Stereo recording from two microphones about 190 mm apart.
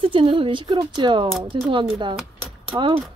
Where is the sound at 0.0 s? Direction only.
25° right (ahead or behind).